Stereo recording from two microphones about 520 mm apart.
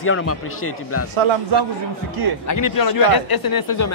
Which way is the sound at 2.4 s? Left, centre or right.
Left.